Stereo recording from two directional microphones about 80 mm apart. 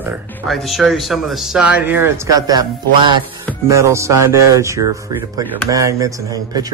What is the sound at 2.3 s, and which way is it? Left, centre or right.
Speech, right.